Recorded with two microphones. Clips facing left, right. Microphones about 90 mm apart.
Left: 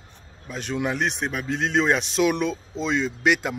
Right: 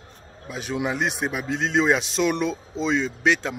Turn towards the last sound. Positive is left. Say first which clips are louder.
# even
turn(degrees=5)  # may be behind; listen again after turning